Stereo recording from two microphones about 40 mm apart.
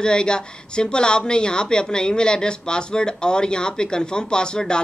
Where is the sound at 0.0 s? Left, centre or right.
Left.